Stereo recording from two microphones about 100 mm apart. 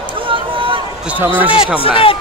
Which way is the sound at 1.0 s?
15° right (ahead or behind).